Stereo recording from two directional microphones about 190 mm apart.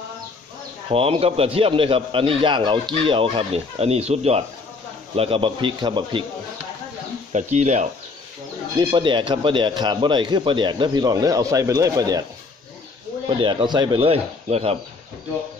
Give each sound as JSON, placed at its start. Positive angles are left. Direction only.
{"t": 0.8, "sound": "a man's voice", "side_deg": -30}
{"t": 7.3, "sound": "speech", "side_deg": -40}
{"t": 8.7, "sound": "a man's voice", "side_deg": -25}
{"t": 13.4, "sound": "a man's voice", "side_deg": -25}